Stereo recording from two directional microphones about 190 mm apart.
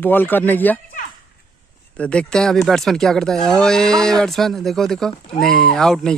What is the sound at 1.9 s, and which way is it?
Speech, 5° left (ahead or behind).